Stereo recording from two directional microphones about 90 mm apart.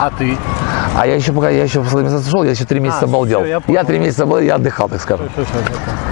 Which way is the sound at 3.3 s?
15° left (ahead or behind).